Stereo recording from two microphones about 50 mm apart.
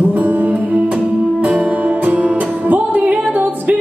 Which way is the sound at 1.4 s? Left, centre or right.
Right.